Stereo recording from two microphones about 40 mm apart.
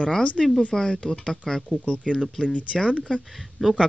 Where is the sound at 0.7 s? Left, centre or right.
Centre.